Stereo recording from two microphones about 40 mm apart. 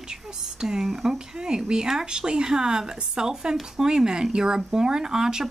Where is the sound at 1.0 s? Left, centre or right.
Centre.